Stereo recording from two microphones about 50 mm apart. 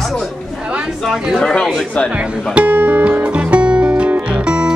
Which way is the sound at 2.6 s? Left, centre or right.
Right.